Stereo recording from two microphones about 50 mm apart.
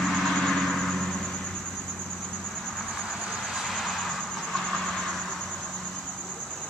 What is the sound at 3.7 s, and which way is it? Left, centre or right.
Vehicle, centre.